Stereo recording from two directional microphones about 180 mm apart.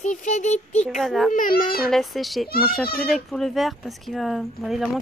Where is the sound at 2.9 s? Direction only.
55° left (ahead or behind).